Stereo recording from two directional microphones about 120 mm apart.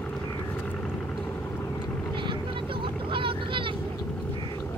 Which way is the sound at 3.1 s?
45° right (ahead or behind).